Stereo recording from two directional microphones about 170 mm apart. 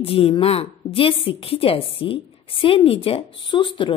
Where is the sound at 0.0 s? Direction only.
35° left (ahead or behind).